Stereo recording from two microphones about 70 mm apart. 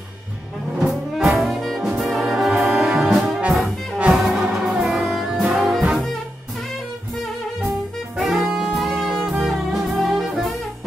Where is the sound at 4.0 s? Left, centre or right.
Centre.